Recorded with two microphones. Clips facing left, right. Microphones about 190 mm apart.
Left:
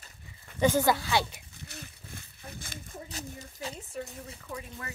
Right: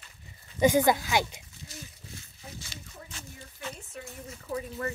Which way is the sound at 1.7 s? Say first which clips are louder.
Even; 60° left (ahead or behind).